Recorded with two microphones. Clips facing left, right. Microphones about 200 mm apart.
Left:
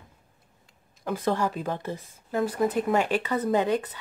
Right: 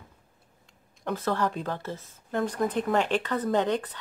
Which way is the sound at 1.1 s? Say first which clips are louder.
Left 2 dB; 15° left (ahead or behind).